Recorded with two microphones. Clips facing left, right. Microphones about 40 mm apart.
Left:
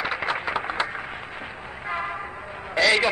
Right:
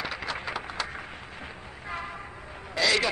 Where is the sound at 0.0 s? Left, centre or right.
Left.